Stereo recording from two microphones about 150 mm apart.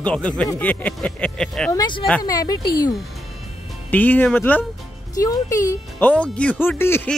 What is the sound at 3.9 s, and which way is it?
Speech, 10° left (ahead or behind).